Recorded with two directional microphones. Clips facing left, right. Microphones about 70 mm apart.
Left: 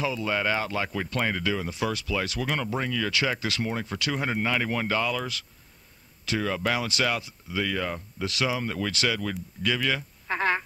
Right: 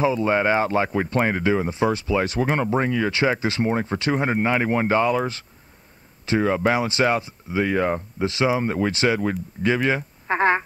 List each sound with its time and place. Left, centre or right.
0.0 s speech: right